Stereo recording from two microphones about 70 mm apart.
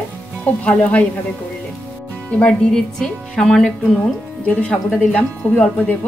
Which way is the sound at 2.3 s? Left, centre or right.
Centre.